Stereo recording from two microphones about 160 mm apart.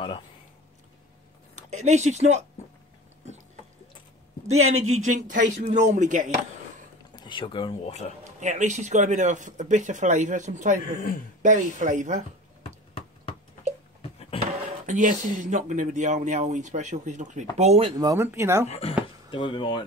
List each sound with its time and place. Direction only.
1.5 s speech: 45° right (ahead or behind)
4.6 s speech: 45° right (ahead or behind)
7.2 s speech: 30° left (ahead or behind)
8.2 s speech: 50° right (ahead or behind)
14.3 s drawer open or close: 35° left (ahead or behind)
14.9 s speech: 50° right (ahead or behind)
17.9 s speech: 20° right (ahead or behind)
18.7 s speech: 35° left (ahead or behind)